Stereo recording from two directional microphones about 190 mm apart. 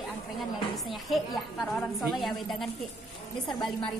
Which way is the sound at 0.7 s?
Centre (ahead or behind).